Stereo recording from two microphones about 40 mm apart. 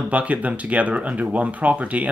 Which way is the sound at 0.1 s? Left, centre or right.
Right.